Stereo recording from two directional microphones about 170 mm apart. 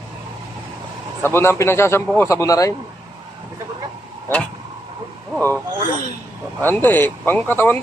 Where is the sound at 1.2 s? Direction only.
15° left (ahead or behind).